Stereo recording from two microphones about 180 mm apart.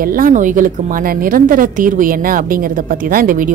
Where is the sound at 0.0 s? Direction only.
50° right (ahead or behind).